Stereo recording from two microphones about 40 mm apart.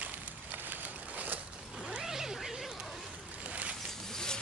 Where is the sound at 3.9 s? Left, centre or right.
Centre.